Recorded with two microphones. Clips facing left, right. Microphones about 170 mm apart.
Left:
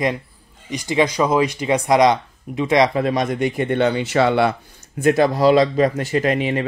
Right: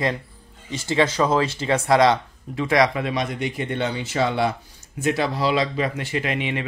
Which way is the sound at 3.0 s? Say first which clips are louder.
Left 6 dB; 45° left (ahead or behind).